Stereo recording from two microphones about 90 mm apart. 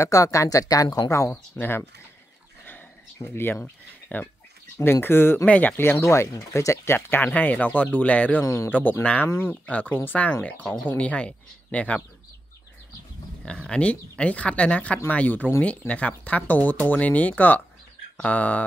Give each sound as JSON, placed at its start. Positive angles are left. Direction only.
{"t": 0.0, "sound": "speech", "side_deg": 35}
{"t": 1.3, "sound": "speech", "side_deg": 25}
{"t": 3.3, "sound": "speech", "side_deg": 25}
{"t": 5.8, "sound": "speech", "side_deg": 30}
{"t": 9.3, "sound": "speech", "side_deg": 25}
{"t": 13.4, "sound": "speech", "side_deg": 10}
{"t": 18.1, "sound": "a sound", "side_deg": 15}